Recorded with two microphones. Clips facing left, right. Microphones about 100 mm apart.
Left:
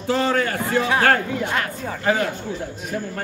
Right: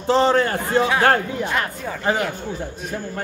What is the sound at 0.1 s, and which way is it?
Speech, 25° right (ahead or behind).